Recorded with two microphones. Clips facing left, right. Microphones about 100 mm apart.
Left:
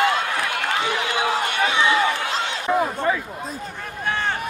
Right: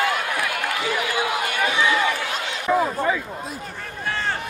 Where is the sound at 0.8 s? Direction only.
30° left (ahead or behind).